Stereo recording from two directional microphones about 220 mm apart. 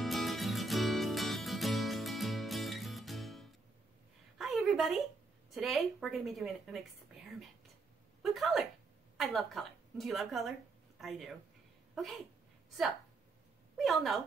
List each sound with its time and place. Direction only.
0.0 s music: centre (ahead or behind)
4.4 s a sound: centre (ahead or behind)
5.5 s a woman's voice: centre (ahead or behind)
8.2 s a sound: centre (ahead or behind)
9.1 s a woman's voice: centre (ahead or behind)
13.7 s a woman's voice: centre (ahead or behind)